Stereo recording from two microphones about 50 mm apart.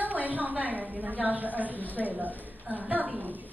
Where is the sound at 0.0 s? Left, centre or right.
Right.